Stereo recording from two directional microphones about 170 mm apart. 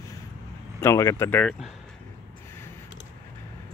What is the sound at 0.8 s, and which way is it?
Speech, 20° left (ahead or behind).